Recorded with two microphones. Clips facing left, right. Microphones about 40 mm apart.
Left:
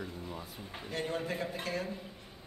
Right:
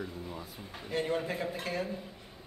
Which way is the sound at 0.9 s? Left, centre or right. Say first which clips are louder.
Right 4 dB; centre.